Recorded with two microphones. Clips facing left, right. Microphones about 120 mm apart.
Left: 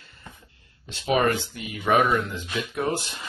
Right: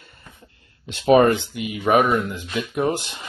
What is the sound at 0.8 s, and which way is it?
Speech, 60° right (ahead or behind).